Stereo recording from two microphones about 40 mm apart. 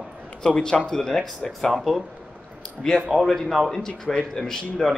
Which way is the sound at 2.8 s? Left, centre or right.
Centre.